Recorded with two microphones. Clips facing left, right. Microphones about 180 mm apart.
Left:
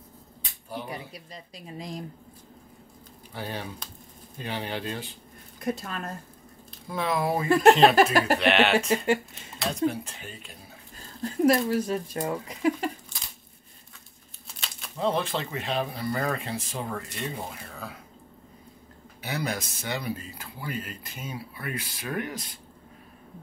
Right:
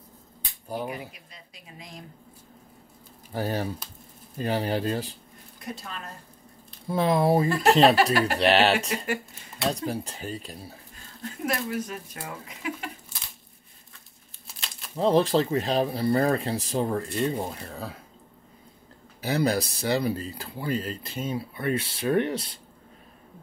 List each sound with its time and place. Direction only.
0.8 s speech: 35° left (ahead or behind)
3.3 s speech: 40° right (ahead or behind)
5.9 s speech: 50° left (ahead or behind)
6.9 s speech: 30° right (ahead or behind)
8.7 s speech: 30° left (ahead or behind)
9.7 s speech: 35° right (ahead or behind)
11.4 s speech: 30° left (ahead or behind)
14.5 s crumpling: centre (ahead or behind)
15.0 s speech: 35° right (ahead or behind)
19.2 s speech: 35° right (ahead or behind)